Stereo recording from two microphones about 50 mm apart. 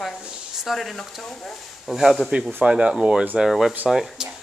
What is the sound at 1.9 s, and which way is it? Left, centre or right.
Speech, centre.